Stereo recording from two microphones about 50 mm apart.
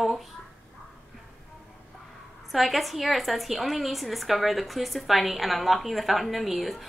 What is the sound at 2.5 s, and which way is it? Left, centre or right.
A woman's voice, centre.